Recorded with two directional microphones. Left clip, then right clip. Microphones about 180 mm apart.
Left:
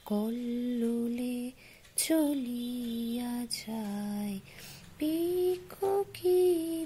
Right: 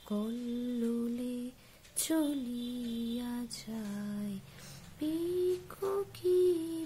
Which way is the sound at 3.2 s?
20° left (ahead or behind).